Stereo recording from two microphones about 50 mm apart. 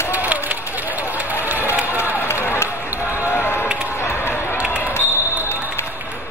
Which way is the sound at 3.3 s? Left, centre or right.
Left.